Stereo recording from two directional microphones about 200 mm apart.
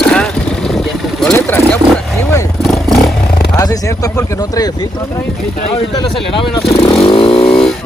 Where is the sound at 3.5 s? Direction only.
15° left (ahead or behind).